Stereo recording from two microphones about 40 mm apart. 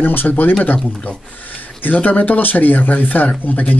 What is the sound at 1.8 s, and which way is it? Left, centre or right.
A man's voice, left.